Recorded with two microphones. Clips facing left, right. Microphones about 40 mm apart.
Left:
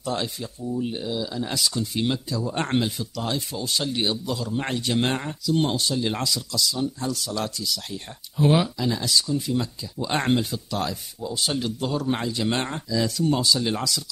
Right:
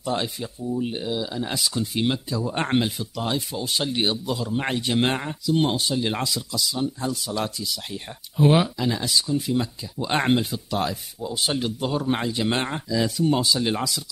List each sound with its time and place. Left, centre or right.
0.0 s speech: centre